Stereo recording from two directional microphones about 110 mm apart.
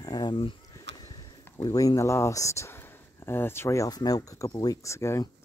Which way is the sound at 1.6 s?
35° left (ahead or behind).